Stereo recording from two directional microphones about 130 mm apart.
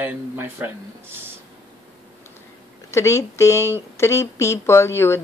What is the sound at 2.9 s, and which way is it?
Speech, 20° left (ahead or behind).